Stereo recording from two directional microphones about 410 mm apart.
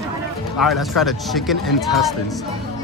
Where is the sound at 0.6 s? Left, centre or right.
Centre.